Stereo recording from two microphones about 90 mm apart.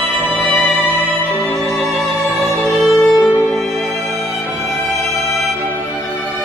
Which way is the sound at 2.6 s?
15° right (ahead or behind).